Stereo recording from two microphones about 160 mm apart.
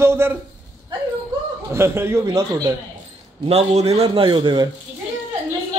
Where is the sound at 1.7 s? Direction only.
15° right (ahead or behind).